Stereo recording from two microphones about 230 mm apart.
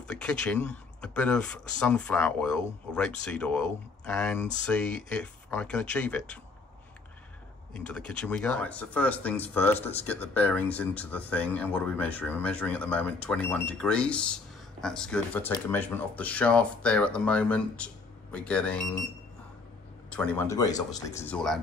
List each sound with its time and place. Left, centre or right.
0.1 s speech: centre
7.7 s speech: centre
20.1 s speech: centre